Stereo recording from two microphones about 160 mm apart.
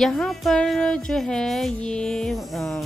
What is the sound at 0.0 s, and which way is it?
Speech, centre (ahead or behind).